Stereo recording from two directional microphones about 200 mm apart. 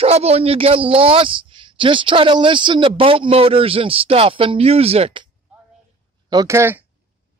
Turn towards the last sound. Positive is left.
turn(degrees=-10)  # may be behind; listen again after turning